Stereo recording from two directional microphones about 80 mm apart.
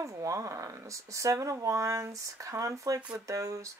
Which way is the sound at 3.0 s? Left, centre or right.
Centre.